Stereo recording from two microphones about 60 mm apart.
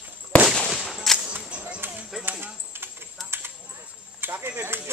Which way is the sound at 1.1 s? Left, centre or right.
Centre.